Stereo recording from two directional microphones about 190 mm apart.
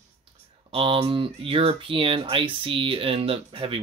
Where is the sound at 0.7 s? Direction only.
30° right (ahead or behind).